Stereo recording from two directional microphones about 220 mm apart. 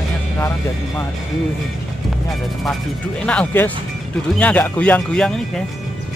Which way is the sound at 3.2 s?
5° left (ahead or behind).